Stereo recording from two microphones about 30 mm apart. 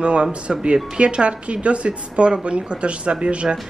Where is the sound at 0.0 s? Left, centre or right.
Right.